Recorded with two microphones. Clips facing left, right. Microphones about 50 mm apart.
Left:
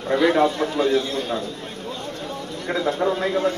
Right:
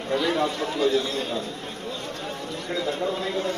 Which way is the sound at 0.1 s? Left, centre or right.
Left.